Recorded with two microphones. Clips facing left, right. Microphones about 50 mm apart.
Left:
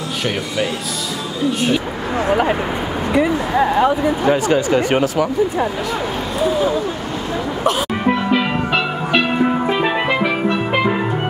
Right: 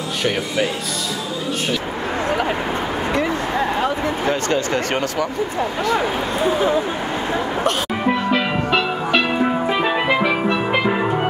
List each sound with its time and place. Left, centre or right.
1.7 s speech: centre
7.6 s music: centre